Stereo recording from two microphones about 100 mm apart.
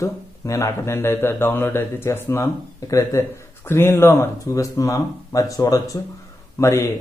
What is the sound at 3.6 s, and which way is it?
Speech, 25° left (ahead or behind).